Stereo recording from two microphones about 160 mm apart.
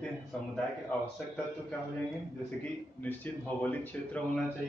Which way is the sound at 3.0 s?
10° left (ahead or behind).